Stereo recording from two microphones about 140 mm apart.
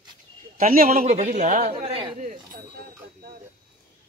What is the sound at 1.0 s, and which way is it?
Speech, 60° right (ahead or behind).